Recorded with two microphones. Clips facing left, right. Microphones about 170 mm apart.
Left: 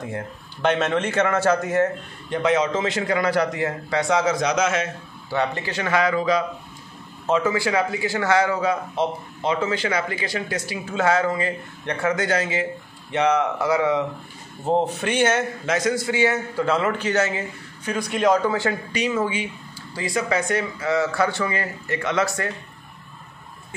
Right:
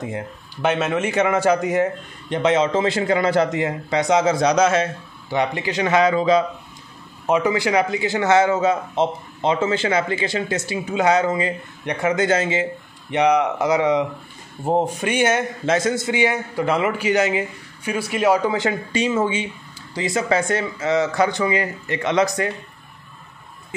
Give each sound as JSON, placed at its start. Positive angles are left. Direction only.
{"t": 0.6, "sound": "a man's voice", "side_deg": -5}
{"t": 5.3, "sound": "a man's voice", "side_deg": -15}
{"t": 15.6, "sound": "a man's voice", "side_deg": -25}